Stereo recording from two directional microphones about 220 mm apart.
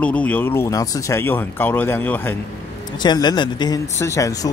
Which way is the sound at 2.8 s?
20° left (ahead or behind).